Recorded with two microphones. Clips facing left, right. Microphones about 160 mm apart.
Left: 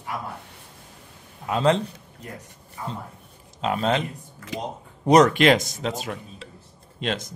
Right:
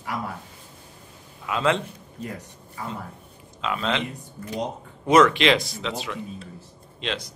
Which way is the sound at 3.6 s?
45° left (ahead or behind).